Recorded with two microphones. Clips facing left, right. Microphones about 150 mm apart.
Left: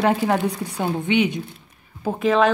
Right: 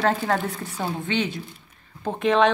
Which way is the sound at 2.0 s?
5° left (ahead or behind).